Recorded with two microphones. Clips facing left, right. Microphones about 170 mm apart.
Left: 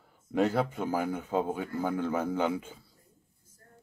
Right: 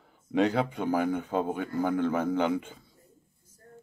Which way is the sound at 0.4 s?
5° left (ahead or behind).